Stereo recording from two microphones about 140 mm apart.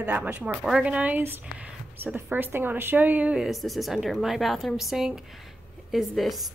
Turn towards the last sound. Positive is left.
turn(degrees=0)  # may be behind; listen again after turning